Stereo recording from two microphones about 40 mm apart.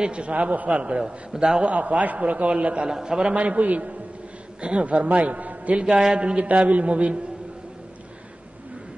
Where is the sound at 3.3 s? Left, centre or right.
Right.